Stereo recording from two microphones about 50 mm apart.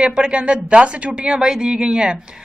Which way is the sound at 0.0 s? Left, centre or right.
Centre.